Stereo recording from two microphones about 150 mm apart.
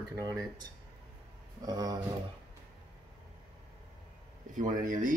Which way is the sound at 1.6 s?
25° right (ahead or behind).